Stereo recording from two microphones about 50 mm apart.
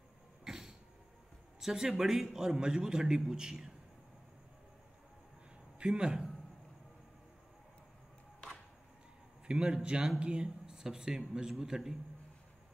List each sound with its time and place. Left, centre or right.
0.5 s cough: centre
1.6 s a man's voice: centre
5.8 s speech: centre
9.5 s a man's voice: centre